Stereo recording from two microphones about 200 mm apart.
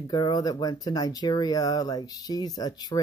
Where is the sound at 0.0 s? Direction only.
20° left (ahead or behind).